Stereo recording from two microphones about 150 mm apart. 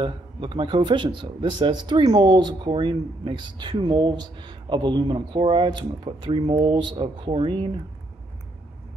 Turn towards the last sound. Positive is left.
turn(degrees=-35)  # may be behind; listen again after turning